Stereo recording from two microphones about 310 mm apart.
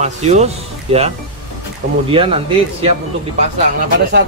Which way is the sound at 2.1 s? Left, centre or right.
Centre.